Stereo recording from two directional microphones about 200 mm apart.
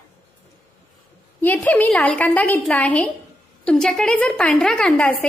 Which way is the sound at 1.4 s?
10° left (ahead or behind).